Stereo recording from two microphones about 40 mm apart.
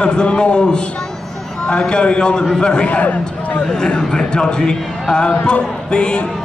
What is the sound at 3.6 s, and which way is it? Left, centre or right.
A man's voice, centre.